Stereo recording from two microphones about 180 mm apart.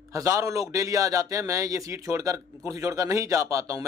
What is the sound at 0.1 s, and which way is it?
A man's voice, 15° right (ahead or behind).